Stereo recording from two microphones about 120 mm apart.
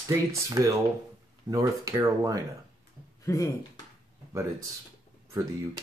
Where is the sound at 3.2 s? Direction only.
25° left (ahead or behind).